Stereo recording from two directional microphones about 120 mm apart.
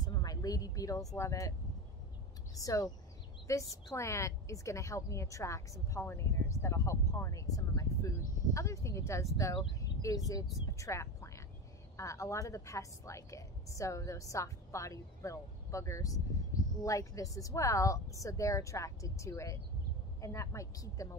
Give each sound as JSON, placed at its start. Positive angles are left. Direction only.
{"t": 0.0, "sound": "speech", "side_deg": 35}
{"t": 2.5, "sound": "a woman's voice", "side_deg": 30}